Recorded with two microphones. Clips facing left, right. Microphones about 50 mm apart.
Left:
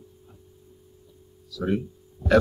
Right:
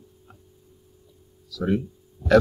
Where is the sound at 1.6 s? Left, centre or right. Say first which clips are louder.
Right 2 dB; centre.